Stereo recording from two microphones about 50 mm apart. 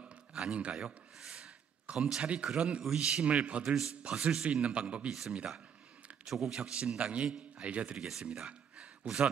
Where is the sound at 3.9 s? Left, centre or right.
Right.